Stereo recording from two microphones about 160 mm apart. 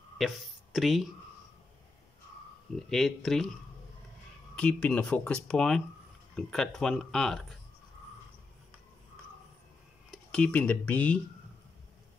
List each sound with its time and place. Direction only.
0.7 s speech: centre (ahead or behind)
2.7 s speech: 5° left (ahead or behind)
4.6 s speech: 5° left (ahead or behind)
10.1 s speech: 5° left (ahead or behind)